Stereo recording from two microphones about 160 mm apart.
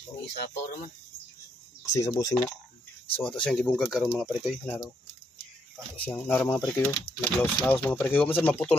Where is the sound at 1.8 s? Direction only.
20° left (ahead or behind).